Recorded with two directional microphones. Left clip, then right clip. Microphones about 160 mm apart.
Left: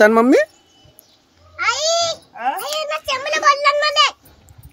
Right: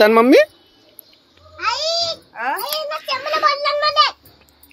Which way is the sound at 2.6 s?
20° left (ahead or behind).